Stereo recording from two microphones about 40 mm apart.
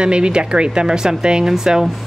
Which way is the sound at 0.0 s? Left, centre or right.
Right.